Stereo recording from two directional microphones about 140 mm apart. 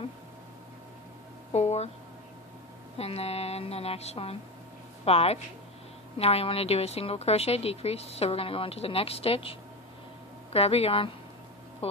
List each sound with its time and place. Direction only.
1.5 s a woman's voice: 50° left (ahead or behind)
3.0 s a woman's voice: 45° left (ahead or behind)